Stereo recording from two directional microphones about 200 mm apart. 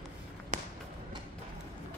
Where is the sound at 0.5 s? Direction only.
40° right (ahead or behind).